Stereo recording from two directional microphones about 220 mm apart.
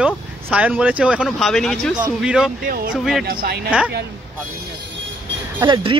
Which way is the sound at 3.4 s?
45° right (ahead or behind).